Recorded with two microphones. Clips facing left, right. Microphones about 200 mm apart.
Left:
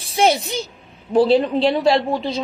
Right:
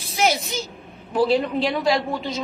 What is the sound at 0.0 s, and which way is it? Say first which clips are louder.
A child's voice: left 5 dB; 30° left (ahead or behind).